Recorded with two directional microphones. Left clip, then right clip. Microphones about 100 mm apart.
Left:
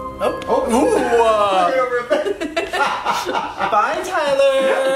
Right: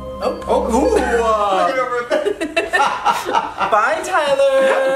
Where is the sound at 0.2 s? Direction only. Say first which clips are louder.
Even; 15° left (ahead or behind).